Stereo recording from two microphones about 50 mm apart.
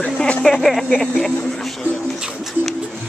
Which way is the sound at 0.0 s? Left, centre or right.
Left.